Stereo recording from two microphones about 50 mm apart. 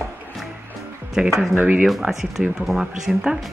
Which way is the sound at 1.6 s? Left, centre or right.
Right.